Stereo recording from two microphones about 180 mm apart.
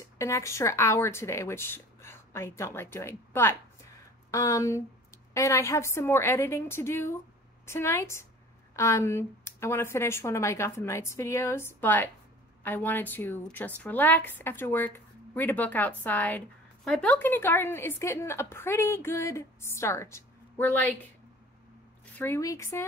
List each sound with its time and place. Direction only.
0.0 s speech: 15° left (ahead or behind)
22.2 s speech: 15° left (ahead or behind)